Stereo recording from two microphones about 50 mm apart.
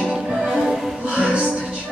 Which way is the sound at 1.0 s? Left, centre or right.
Right.